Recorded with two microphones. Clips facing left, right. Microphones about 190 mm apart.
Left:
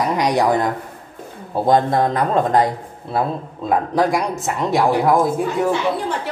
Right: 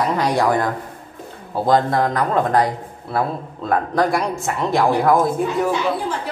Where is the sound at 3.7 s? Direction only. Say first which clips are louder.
Left 1 dB; 15° left (ahead or behind).